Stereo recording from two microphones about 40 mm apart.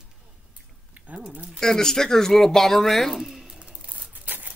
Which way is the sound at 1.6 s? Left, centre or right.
Centre.